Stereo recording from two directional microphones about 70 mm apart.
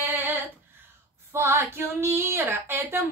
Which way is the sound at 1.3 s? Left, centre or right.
Right.